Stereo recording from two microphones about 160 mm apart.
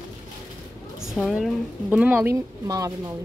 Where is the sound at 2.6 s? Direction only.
20° right (ahead or behind).